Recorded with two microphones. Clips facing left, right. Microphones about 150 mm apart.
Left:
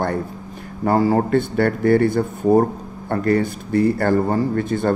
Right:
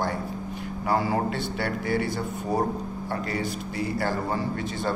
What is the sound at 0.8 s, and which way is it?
A man's voice, 40° left (ahead or behind).